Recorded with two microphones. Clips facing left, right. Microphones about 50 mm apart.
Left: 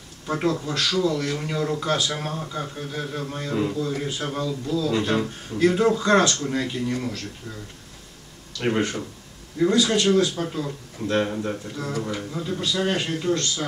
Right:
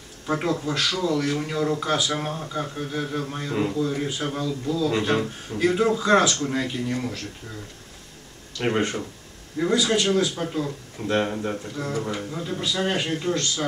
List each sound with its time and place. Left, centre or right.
0.3 s a man's voice: centre
8.6 s a man's voice: centre